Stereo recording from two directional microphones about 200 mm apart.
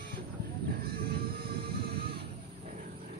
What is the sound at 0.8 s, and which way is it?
Music, 50° right (ahead or behind).